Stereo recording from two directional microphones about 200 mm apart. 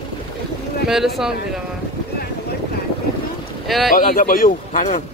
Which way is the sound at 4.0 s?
45° left (ahead or behind).